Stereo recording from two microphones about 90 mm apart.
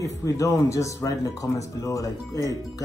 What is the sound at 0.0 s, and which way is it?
Speech, 40° left (ahead or behind).